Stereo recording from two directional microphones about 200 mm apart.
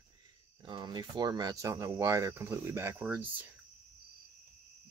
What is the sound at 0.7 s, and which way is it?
Speech, 20° right (ahead or behind).